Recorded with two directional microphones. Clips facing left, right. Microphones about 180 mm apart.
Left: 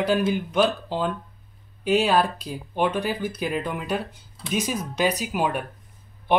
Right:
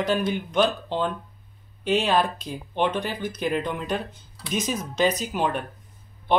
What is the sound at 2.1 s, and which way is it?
Speech, 5° left (ahead or behind).